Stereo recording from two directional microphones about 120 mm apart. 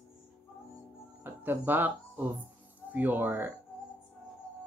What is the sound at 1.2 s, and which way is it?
Speech, 15° right (ahead or behind).